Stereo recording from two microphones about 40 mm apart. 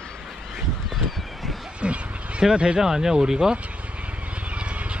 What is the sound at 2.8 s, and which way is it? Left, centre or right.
Speech, centre.